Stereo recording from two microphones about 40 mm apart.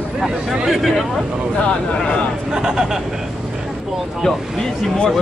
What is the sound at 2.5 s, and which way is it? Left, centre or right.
Speech, centre.